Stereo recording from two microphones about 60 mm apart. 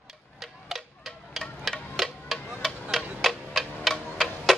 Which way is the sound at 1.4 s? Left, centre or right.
Centre.